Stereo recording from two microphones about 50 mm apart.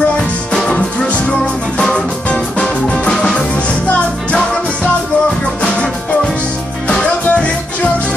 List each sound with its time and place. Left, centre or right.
1.4 s music: centre
6.9 s music: centre